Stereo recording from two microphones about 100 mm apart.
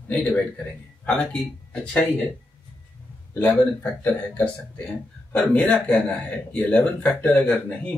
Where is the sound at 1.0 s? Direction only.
10° left (ahead or behind).